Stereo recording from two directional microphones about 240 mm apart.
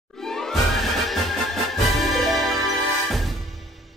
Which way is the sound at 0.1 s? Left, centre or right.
Centre.